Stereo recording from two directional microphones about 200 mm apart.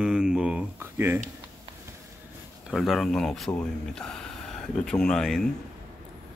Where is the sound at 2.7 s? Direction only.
Centre (ahead or behind).